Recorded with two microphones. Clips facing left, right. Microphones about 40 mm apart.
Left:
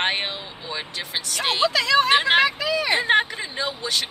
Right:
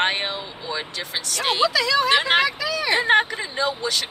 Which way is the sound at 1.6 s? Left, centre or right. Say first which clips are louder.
Left 2 dB; left.